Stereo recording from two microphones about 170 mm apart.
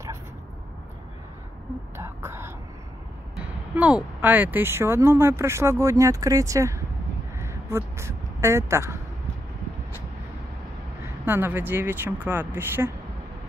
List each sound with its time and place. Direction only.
2.0 s speech: 15° right (ahead or behind)
3.7 s speech: 10° right (ahead or behind)
7.3 s a sound: 15° right (ahead or behind)
11.2 s speech: 10° right (ahead or behind)